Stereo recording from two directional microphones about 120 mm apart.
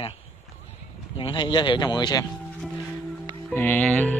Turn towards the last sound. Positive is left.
turn(degrees=5)  # may be behind; listen again after turning